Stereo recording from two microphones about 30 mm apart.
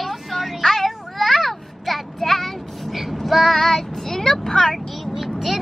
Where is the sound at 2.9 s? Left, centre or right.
Centre.